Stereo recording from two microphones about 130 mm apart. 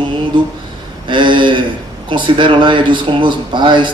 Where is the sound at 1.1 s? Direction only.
40° right (ahead or behind).